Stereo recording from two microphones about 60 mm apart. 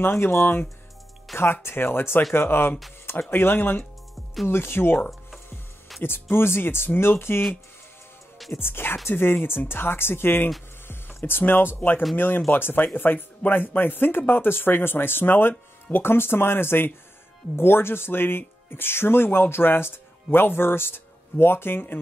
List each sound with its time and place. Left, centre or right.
0.0 s speech: left
8.5 s speech: left